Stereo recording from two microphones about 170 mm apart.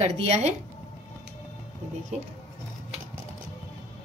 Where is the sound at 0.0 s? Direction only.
40° right (ahead or behind).